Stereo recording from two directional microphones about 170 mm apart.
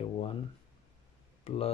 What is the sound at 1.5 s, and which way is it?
Speech, 35° left (ahead or behind).